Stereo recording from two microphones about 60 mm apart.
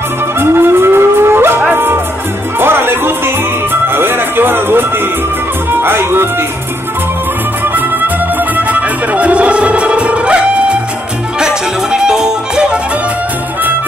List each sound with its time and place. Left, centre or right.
0.4 s a sound: right
1.7 s music: right
8.5 s music: right